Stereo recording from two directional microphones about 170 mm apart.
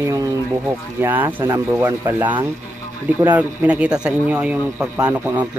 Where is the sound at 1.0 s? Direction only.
10° right (ahead or behind).